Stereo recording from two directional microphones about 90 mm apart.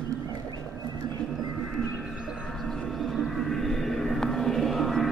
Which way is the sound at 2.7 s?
Centre (ahead or behind).